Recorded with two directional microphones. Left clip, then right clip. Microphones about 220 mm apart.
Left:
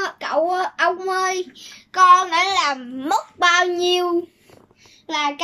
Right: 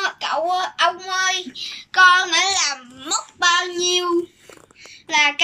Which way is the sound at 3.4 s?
25° left (ahead or behind).